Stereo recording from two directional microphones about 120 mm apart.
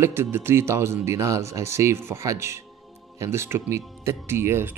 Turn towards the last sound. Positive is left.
turn(degrees=-20)  # may be behind; listen again after turning